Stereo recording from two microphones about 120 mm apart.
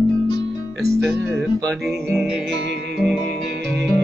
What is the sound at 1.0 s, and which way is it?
Music, centre (ahead or behind).